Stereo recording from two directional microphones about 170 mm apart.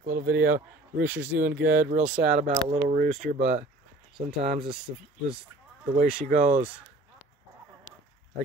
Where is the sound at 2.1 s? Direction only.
45° right (ahead or behind).